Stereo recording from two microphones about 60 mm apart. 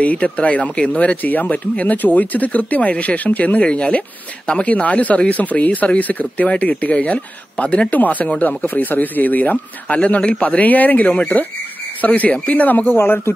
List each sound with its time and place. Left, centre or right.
0.0 s speech: left
12.9 s speech: left